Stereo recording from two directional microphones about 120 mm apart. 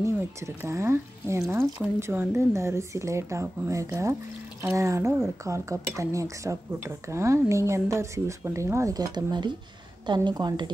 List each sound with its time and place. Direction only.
0.6 s a woman's voice: 20° right (ahead or behind); by 10.7 s 35° right (ahead or behind)